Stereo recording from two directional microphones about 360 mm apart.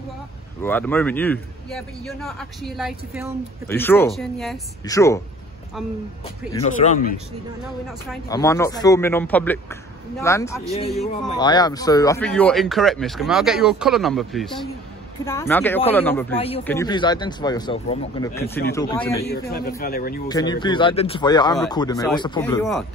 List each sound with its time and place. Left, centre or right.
0.6 s a man's voice: centre
6.5 s speech: centre
8.3 s a man's voice: centre
19.2 s speech: left
20.2 s speech: centre